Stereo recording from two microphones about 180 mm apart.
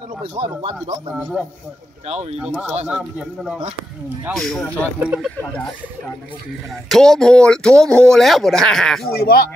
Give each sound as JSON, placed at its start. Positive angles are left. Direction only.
{"t": 0.2, "sound": "speech", "side_deg": -30}
{"t": 1.1, "sound": "speech", "side_deg": 0}
{"t": 2.0, "sound": "speech", "side_deg": -35}
{"t": 2.9, "sound": "speech", "side_deg": -5}
{"t": 6.7, "sound": "speech", "side_deg": 0}
{"t": 9.2, "sound": "speech", "side_deg": 55}